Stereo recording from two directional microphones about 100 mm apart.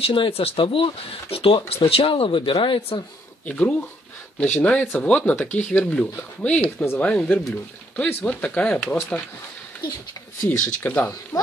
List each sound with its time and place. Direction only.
0.0 s speech: 65° left (ahead or behind)
3.4 s speech: 15° left (ahead or behind)
10.8 s speech: 20° left (ahead or behind)
11.3 s speech: 40° left (ahead or behind)